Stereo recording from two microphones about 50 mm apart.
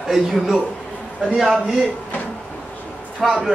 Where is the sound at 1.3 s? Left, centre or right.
Centre.